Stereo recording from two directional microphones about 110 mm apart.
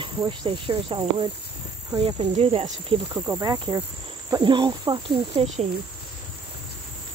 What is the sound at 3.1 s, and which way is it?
Speech, 25° right (ahead or behind).